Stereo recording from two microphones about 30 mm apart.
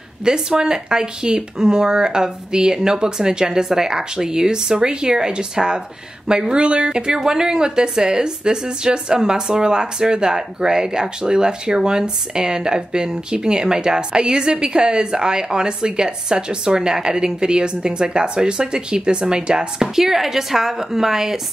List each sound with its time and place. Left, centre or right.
0.2 s speech: right
19.8 s speech: centre